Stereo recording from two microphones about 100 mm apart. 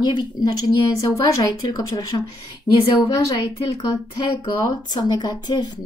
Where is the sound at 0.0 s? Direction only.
45° left (ahead or behind).